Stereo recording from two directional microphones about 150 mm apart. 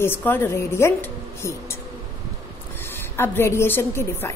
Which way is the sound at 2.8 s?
15° left (ahead or behind).